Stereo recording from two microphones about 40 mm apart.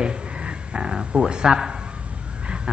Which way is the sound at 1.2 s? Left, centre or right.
Centre.